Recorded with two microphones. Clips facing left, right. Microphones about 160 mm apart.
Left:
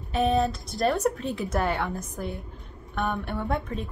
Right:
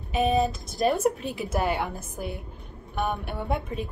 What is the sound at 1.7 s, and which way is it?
A woman's voice, 20° right (ahead or behind).